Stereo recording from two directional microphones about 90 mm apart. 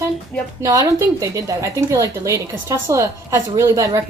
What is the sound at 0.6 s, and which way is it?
A woman's voice, 35° right (ahead or behind).